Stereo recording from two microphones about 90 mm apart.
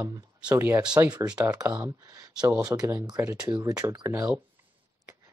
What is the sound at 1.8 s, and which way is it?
Speech, 40° right (ahead or behind).